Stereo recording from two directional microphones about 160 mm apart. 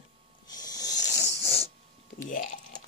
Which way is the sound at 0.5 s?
25° left (ahead or behind).